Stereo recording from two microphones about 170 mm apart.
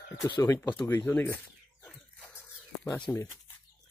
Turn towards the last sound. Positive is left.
turn(degrees=5)  # may be behind; listen again after turning